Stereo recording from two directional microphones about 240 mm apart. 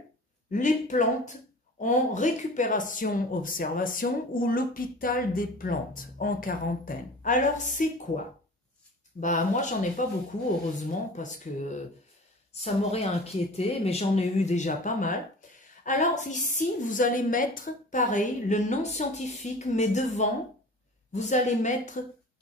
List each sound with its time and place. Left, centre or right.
0.5 s speech: left
9.2 s speech: left
11.1 s speech: left